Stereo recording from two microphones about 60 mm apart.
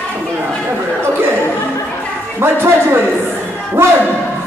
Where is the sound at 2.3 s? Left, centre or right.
Right.